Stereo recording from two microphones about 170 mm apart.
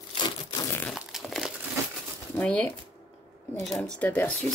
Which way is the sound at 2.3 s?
10° left (ahead or behind).